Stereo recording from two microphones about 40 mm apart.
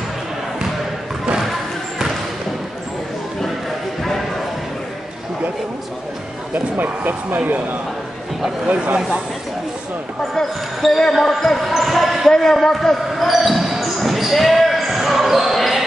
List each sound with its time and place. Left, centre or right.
6.5 s speech: right
10.3 s speech: centre
12.3 s speech: centre
13.3 s basketball bounce: centre